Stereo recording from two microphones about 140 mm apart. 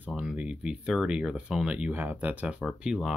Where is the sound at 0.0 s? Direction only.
5° right (ahead or behind).